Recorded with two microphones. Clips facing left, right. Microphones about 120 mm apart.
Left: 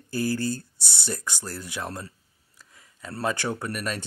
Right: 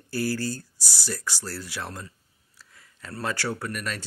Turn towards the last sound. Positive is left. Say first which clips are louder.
# left 1 dB
turn(degrees=20)  # may be behind; listen again after turning